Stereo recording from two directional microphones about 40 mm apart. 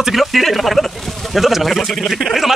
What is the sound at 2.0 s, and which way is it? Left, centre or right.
Speech, centre.